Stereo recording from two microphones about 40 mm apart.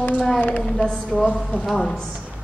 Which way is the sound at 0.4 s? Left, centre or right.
Left.